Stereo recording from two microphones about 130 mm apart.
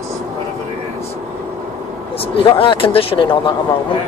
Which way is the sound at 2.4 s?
40° left (ahead or behind).